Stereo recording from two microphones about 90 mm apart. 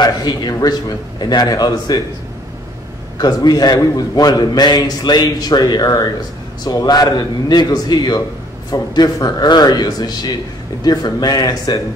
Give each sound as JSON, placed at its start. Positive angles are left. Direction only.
{"t": 0.0, "sound": "a man's voice", "side_deg": 50}
{"t": 3.2, "sound": "a man's voice", "side_deg": 45}